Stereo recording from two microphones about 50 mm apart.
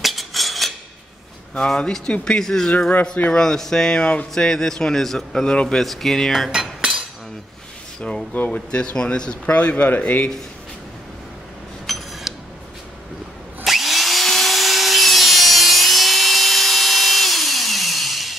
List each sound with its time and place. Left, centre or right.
0.0 s cutlery: centre
1.8 s a man's voice: centre
5.9 s speech: centre
6.5 s cutlery: centre
8.5 s speech: left
9.5 s speech: left
11.8 s a sound: centre
13.7 s wood: centre